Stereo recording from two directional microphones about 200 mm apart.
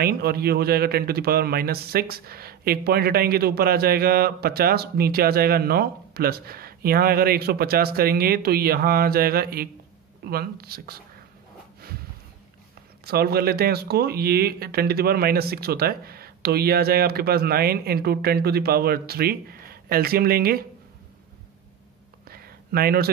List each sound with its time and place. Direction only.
0.0 s a man's voice: 50° right (ahead or behind)
13.0 s a man's voice: 50° right (ahead or behind)
22.3 s a sound: 50° right (ahead or behind)